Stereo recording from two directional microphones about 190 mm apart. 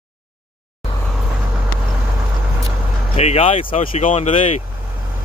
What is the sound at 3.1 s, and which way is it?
Speech, 30° left (ahead or behind).